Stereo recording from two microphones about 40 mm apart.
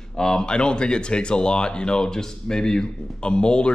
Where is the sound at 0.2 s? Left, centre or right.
Centre.